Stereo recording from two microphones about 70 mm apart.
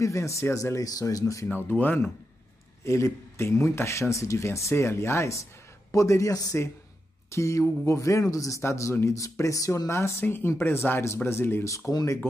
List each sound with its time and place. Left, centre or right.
0.0 s speech: left
1.5 s speech: left
2.8 s speech: left
7.2 s speech: left
10.2 s a man's voice: left
11.9 s speech: left